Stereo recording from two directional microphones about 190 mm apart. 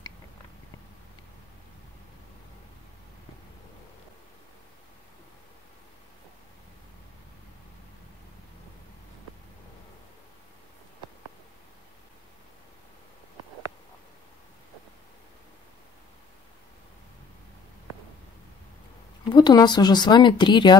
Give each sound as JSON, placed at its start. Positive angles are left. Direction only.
{"t": 19.2, "sound": "speech", "side_deg": 25}